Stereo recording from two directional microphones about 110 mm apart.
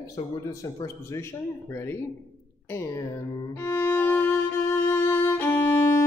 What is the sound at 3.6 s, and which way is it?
Music, 25° left (ahead or behind).